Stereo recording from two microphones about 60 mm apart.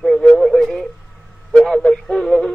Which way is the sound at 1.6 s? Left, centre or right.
Centre.